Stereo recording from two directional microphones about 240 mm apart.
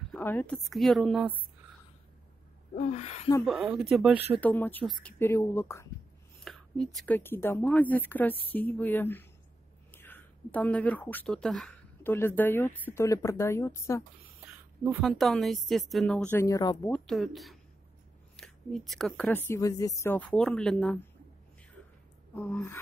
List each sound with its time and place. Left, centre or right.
0.1 s a woman's voice: centre
2.8 s speech: left
3.4 s a woman's voice: centre
4.4 s speech: centre
14.4 s a woman's voice: centre
22.3 s speech: centre